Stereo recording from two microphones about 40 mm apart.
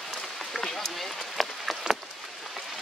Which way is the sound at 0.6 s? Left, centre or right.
Centre.